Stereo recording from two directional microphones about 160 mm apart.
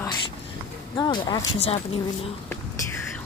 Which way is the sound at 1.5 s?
40° left (ahead or behind).